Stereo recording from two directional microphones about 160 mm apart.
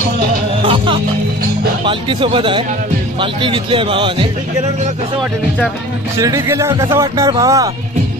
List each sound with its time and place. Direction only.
0.6 s music: 35° right (ahead or behind)
1.9 s a man's voice: 30° right (ahead or behind)
6.1 s speech: 20° right (ahead or behind)